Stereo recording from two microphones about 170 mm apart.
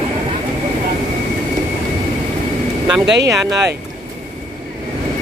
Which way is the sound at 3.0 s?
90° right.